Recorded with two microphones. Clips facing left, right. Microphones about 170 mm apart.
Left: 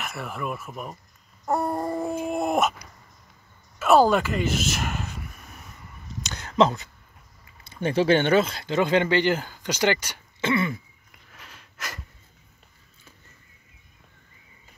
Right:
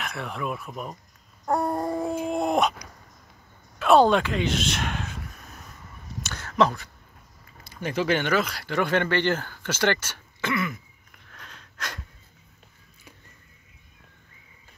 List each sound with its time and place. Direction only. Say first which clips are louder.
0.0 s speech: even; centre (ahead or behind)
1.4 s a sound: even; 5° left (ahead or behind)
2.2 s dog: even; 5° left (ahead or behind)
3.8 s speech: even; 5° left (ahead or behind)
6.2 s a sound: left 2 dB; 20° left (ahead or behind)
7.7 s speech: left 5 dB; 30° left (ahead or behind)
10.4 s throat clearing: left 4 dB; 30° left (ahead or behind)
11.3 s sniff: right 2 dB; 5° left (ahead or behind)